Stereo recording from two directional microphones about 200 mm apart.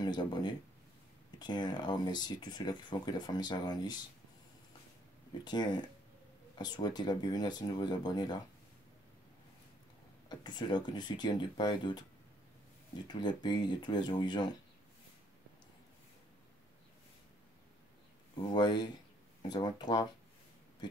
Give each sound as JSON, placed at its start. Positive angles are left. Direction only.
{"t": 0.0, "sound": "speech", "side_deg": 20}
{"t": 5.4, "sound": "speech", "side_deg": 20}
{"t": 10.2, "sound": "speech", "side_deg": 20}
{"t": 13.1, "sound": "speech", "side_deg": 20}
{"t": 18.5, "sound": "speech", "side_deg": 20}